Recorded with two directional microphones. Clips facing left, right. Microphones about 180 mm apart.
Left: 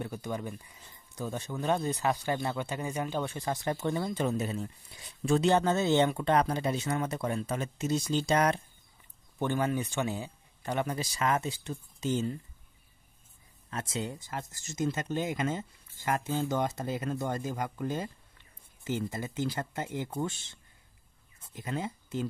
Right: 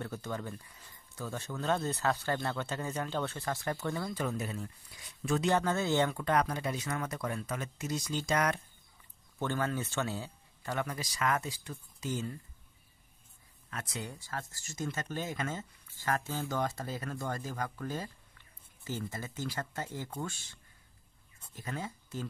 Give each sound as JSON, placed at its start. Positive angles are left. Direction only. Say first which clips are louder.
{"t": 0.0, "sound": "speech", "louder": "left 3 dB", "side_deg": 15}
{"t": 9.4, "sound": "speech", "louder": "left 4 dB", "side_deg": 15}
{"t": 13.7, "sound": "speech", "louder": "left 6 dB", "side_deg": 25}
{"t": 21.5, "sound": "speech", "louder": "left 5 dB", "side_deg": 20}